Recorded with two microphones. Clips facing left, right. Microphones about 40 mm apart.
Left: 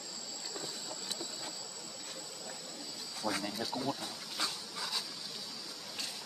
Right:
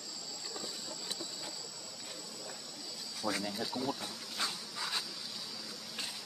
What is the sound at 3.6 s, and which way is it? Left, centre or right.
Speech, centre.